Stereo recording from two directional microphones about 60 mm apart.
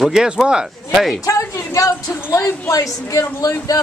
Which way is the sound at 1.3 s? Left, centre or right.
Left.